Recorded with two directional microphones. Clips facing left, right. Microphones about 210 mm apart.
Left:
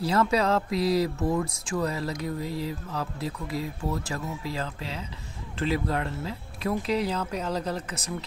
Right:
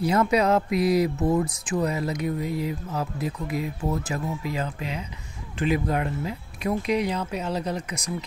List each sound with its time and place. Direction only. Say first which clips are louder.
0.0 s speech: right 3 dB; 20° right (ahead or behind)